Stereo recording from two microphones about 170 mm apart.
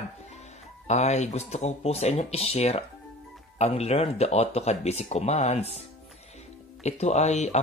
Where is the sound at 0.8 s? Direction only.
40° left (ahead or behind).